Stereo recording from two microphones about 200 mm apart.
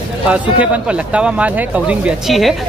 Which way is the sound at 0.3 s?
5° right (ahead or behind).